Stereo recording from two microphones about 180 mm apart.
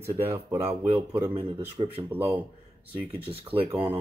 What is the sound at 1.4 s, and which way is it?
Speech, 25° right (ahead or behind).